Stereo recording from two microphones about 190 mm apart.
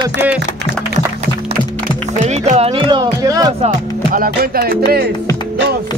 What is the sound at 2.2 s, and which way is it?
Speech, 35° right (ahead or behind).